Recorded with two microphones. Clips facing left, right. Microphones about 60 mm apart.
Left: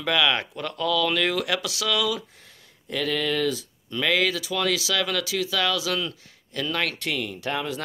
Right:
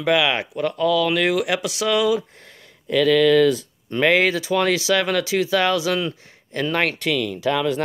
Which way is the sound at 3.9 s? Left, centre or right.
Right.